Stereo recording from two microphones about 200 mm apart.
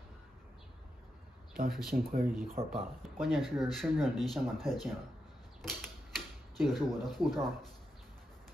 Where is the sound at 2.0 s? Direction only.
45° right (ahead or behind).